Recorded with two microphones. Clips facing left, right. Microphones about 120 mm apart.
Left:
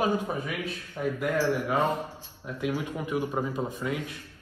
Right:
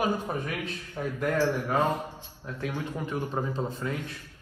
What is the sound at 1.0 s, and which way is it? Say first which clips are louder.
Speech: left 3 dB; 15° right (ahead or behind).